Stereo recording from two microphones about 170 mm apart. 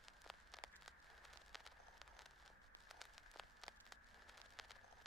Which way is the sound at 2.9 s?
Centre (ahead or behind).